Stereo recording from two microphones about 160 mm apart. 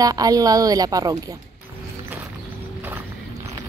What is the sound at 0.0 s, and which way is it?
A woman's voice, 25° right (ahead or behind).